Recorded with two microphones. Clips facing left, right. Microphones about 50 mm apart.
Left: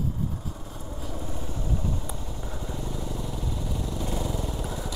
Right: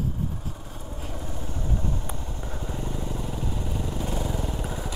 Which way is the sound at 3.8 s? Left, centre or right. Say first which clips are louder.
Even; right.